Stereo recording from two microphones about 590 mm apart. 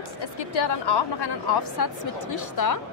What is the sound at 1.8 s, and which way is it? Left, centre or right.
Speech, left.